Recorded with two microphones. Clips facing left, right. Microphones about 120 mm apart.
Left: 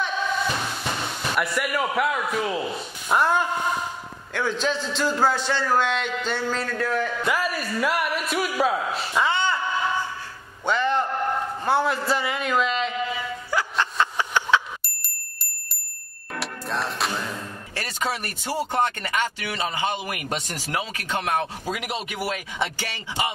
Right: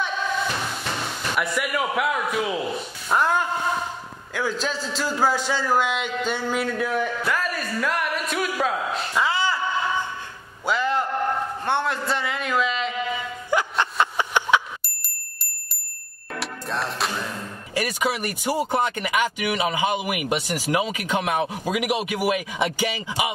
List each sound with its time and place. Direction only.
0.8 s a man's voice: 5° left (ahead or behind); by 7.1 s 15° right (ahead or behind)
7.2 s a man's voice: 5° left (ahead or behind)
10.6 s a sound: 5° right (ahead or behind)
11.6 s a man's voice: centre (ahead or behind)
13.5 s a sound: 20° right (ahead or behind)
16.3 s music: centre (ahead or behind)
17.7 s speech: 10° right (ahead or behind)